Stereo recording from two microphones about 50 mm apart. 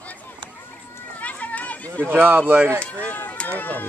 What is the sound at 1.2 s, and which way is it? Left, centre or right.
Children playing, left.